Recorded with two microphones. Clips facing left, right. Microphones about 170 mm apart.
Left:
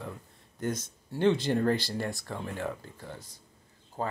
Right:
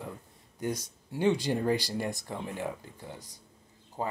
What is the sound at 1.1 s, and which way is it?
Speech, 15° right (ahead or behind).